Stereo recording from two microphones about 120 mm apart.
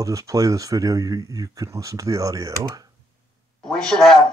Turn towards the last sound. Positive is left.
turn(degrees=5)  # may be behind; listen again after turning